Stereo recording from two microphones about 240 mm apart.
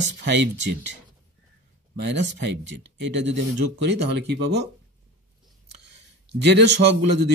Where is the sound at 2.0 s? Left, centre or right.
Right.